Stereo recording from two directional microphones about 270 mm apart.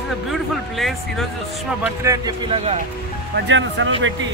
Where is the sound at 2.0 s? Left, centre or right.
Centre.